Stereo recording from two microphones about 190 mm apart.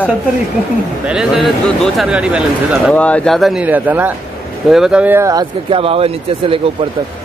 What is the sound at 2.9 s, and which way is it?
Speech, 5° left (ahead or behind).